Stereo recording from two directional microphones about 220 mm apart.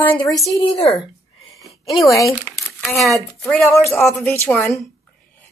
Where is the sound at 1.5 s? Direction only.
Centre (ahead or behind).